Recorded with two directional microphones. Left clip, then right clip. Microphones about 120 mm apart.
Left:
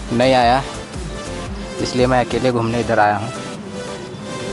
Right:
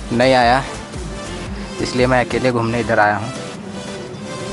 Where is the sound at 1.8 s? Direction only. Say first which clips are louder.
Even; 5° right (ahead or behind).